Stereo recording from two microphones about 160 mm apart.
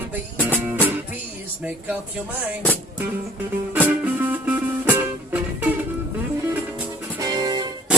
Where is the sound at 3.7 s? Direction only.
10° right (ahead or behind).